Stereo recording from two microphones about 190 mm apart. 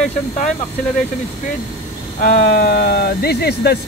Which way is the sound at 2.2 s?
55° left (ahead or behind).